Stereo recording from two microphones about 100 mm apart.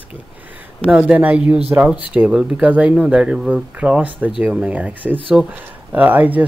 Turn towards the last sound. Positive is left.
turn(degrees=-15)  # may be behind; listen again after turning